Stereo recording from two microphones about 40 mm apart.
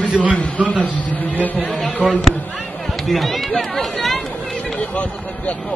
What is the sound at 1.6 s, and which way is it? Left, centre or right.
Speech, centre.